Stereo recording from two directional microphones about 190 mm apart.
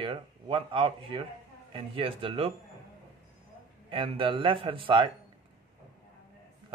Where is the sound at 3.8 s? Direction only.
25° right (ahead or behind).